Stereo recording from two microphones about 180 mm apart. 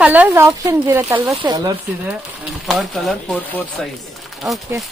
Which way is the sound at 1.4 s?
25° right (ahead or behind).